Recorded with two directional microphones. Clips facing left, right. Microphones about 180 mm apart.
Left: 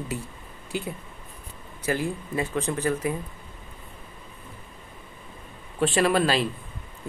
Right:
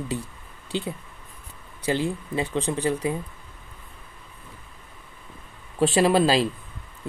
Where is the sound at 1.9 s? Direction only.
20° right (ahead or behind).